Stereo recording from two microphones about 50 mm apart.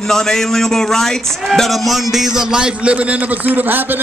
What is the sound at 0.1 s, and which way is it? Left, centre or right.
A man's voice, centre.